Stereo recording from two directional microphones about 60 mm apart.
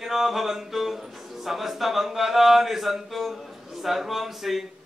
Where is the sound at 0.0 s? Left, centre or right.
Centre.